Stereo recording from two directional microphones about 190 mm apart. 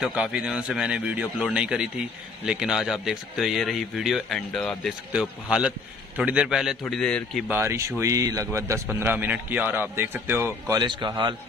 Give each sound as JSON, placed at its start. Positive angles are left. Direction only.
{"t": 0.0, "sound": "speech", "side_deg": -5}
{"t": 7.4, "sound": "a man's voice", "side_deg": -10}
{"t": 10.8, "sound": "a man's voice", "side_deg": -20}